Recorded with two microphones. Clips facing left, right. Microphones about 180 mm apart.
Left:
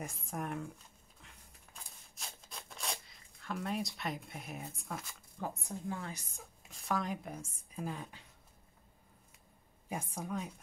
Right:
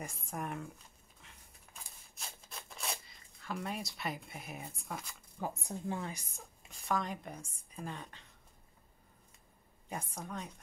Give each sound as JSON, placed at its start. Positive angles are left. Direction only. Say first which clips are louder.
{"t": 0.0, "sound": "speech", "louder": "left 1 dB", "side_deg": 0}
{"t": 1.2, "sound": "horse", "louder": "even", "side_deg": 0}
{"t": 1.8, "sound": "a sound", "louder": "even", "side_deg": 0}
{"t": 5.4, "sound": "a woman's voice", "louder": "right 1 dB", "side_deg": -5}
{"t": 5.9, "sound": "a woman's voice", "louder": "right 3 dB", "side_deg": -15}
{"t": 6.7, "sound": "speech", "louder": "even", "side_deg": 0}
{"t": 9.8, "sound": "a woman's voice", "louder": "left 3 dB", "side_deg": 10}